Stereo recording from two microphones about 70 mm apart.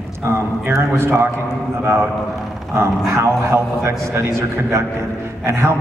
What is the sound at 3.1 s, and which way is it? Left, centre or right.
A man's voice, right.